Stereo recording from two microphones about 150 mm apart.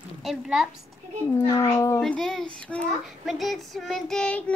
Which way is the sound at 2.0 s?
5° left (ahead or behind).